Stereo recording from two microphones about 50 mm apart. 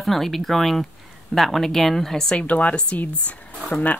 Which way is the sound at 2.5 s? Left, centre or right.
Left.